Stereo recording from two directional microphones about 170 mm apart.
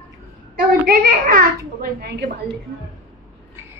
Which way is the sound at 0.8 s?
60° right (ahead or behind).